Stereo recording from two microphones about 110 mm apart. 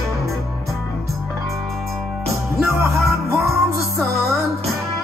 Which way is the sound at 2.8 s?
25° right (ahead or behind).